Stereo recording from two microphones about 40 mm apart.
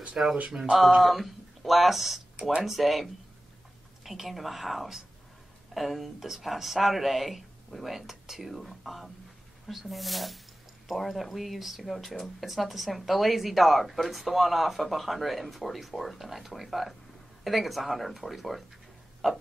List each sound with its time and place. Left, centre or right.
0.2 s speech: right
1.0 s speech: centre